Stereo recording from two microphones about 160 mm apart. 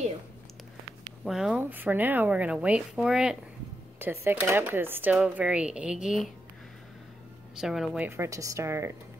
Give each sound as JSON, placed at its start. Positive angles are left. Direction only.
{"t": 1.2, "sound": "speech", "side_deg": -5}
{"t": 4.0, "sound": "a woman's voice", "side_deg": -15}
{"t": 7.6, "sound": "a woman's voice", "side_deg": 0}
{"t": 8.1, "sound": "speech", "side_deg": -20}